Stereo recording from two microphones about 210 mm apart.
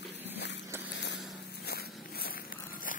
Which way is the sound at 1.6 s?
45° left (ahead or behind).